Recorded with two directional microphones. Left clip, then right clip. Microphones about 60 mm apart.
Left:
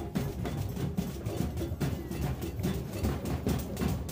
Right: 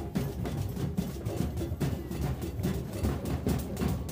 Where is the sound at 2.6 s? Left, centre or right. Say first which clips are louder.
Right 1 dB; right.